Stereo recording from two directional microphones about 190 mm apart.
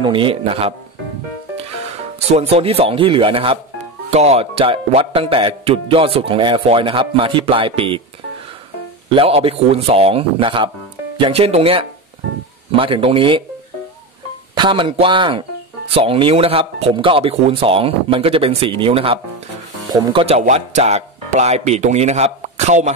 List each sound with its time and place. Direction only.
0.0 s speech: 25° right (ahead or behind)
2.1 s speech: 35° right (ahead or behind)
9.1 s speech: 30° right (ahead or behind)
14.6 s speech: 25° right (ahead or behind)